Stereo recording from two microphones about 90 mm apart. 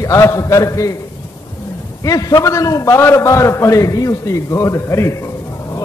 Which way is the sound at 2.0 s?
40° left (ahead or behind).